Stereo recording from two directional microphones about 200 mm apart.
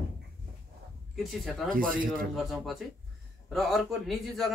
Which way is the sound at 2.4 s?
Centre (ahead or behind).